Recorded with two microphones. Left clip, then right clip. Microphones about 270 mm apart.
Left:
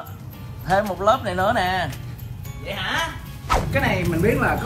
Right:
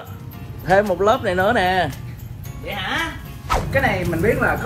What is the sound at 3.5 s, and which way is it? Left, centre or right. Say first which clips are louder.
Speech: right 2 dB; centre.